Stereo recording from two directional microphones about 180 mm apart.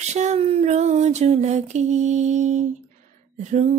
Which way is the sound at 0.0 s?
40° right (ahead or behind).